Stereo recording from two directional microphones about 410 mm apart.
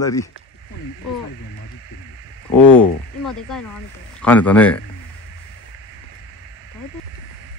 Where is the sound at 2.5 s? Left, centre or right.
Centre.